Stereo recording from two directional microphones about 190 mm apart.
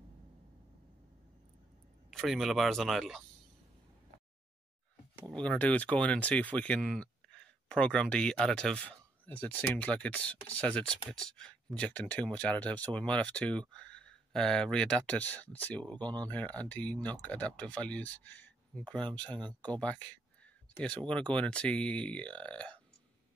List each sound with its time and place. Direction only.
2.0 s speech: centre (ahead or behind)
5.3 s speech: 5° left (ahead or behind)